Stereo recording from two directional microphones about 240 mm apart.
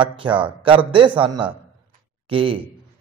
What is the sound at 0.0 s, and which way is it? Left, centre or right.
A man's voice, right.